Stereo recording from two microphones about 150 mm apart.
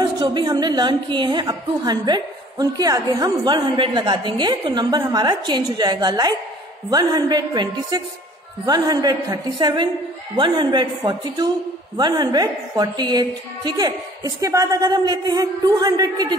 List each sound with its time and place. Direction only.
0.0 s a woman's voice: 30° right (ahead or behind)
12.0 s a woman's voice: 25° right (ahead or behind)